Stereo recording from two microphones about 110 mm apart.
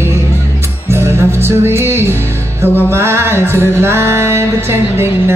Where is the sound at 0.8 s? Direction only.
25° right (ahead or behind).